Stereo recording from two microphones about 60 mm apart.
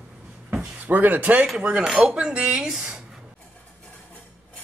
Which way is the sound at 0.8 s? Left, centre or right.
Right.